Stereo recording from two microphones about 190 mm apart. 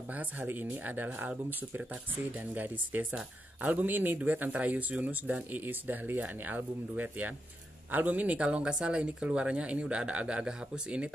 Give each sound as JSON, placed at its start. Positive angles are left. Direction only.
{"t": 0.1, "sound": "speech", "side_deg": -10}